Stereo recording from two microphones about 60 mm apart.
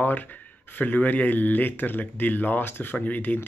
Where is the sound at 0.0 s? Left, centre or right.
Left.